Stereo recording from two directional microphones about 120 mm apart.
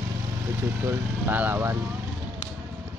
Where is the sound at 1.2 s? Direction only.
15° right (ahead or behind).